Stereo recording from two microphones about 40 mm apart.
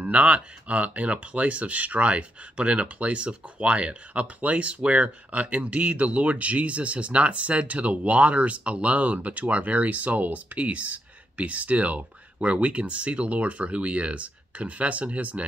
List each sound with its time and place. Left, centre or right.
0.0 s speech: right